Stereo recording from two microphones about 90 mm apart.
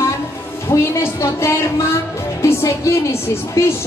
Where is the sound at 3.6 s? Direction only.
30° left (ahead or behind).